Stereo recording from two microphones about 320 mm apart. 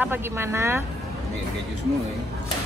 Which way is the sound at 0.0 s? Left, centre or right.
Centre.